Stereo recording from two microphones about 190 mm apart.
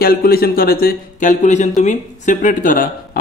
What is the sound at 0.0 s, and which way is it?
Speech, 55° left (ahead or behind).